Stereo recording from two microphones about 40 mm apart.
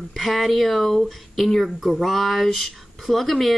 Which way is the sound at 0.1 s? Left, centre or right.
Centre.